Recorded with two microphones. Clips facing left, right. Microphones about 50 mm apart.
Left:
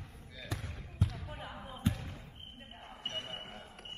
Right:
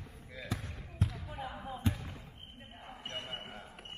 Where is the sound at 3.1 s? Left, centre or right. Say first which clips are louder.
Right 1 dB; right.